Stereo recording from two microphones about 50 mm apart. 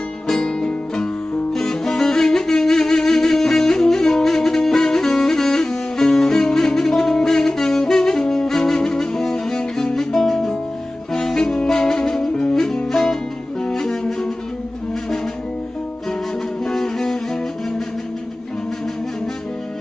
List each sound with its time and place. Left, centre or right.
0.3 s music: centre
9.3 s cello: centre
9.9 s guitar: centre
11.1 s saxophone: centre
16.6 s music: centre